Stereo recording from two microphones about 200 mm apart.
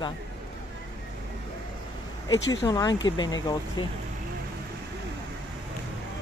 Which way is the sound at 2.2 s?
20° left (ahead or behind).